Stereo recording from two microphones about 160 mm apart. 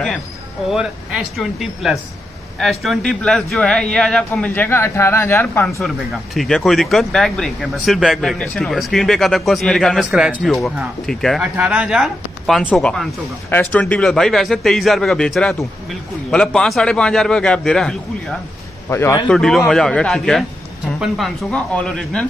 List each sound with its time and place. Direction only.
0.7 s speech: centre (ahead or behind); by 5.8 s 15° left (ahead or behind)
5.8 s speech: centre (ahead or behind)
11.5 s speech: 10° right (ahead or behind)
18.9 s speech: 15° left (ahead or behind)
19.2 s speech: centre (ahead or behind)